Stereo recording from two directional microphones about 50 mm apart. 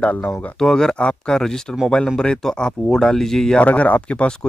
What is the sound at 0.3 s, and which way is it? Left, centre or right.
Speech, centre.